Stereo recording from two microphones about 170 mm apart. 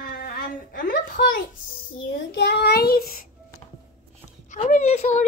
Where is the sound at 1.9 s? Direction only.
90° left; by 3.2 s 60° left (ahead or behind).